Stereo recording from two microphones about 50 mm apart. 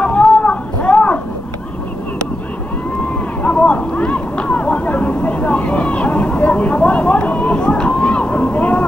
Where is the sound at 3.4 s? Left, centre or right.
Left.